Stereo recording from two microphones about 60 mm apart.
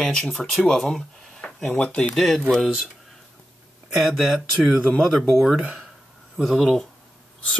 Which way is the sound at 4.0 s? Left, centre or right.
Centre.